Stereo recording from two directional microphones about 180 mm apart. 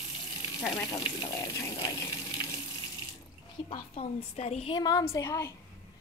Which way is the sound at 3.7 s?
35° left (ahead or behind).